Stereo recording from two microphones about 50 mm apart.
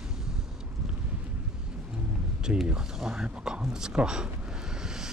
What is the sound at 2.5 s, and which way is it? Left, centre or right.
Speech, centre.